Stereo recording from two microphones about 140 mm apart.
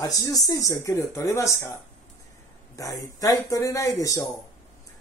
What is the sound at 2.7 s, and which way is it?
Speech, 25° left (ahead or behind).